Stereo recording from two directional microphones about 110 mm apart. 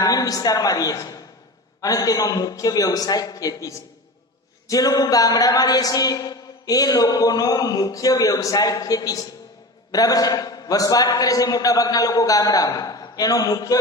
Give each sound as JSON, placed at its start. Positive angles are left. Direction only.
{"t": 0.0, "sound": "a man's voice", "side_deg": 35}